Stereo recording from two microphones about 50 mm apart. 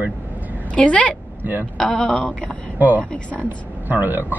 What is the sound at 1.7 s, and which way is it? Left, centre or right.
Speech, centre.